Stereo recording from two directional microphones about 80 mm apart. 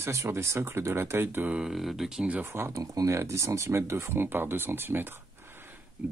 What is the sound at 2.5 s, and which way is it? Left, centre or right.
Speech, right.